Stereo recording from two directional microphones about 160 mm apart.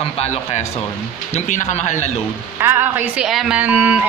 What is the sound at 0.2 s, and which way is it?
Speech, 45° left (ahead or behind).